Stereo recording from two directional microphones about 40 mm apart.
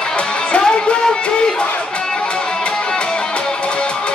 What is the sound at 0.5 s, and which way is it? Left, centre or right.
Music, left.